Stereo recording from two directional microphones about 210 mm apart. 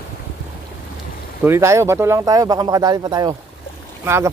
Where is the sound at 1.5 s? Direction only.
15° right (ahead or behind).